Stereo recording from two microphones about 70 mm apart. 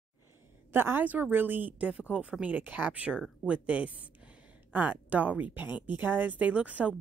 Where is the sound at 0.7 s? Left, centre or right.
Right.